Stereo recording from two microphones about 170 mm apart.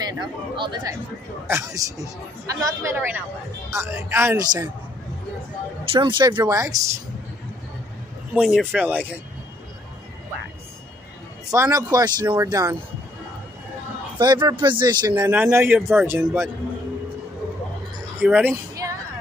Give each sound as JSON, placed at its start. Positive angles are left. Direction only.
{"t": 0.0, "sound": "speech", "side_deg": -25}
{"t": 5.9, "sound": "speech", "side_deg": -30}
{"t": 8.4, "sound": "speech", "side_deg": -5}
{"t": 11.5, "sound": "speech", "side_deg": -20}
{"t": 14.1, "sound": "speech", "side_deg": -25}
{"t": 15.1, "sound": "speech", "side_deg": -10}
{"t": 18.2, "sound": "music", "side_deg": -10}